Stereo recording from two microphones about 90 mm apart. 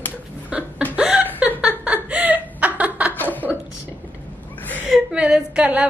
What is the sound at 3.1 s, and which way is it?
Chuckle, 20° left (ahead or behind).